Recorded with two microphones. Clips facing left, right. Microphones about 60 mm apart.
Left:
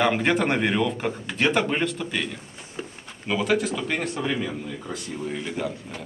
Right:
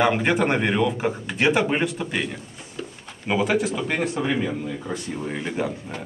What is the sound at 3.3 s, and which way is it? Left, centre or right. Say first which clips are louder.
A man's voice: right 2 dB; centre.